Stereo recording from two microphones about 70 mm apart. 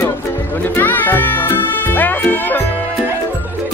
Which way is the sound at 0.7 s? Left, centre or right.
Left.